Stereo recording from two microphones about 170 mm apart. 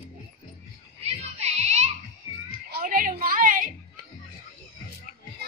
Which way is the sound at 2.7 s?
55° right (ahead or behind).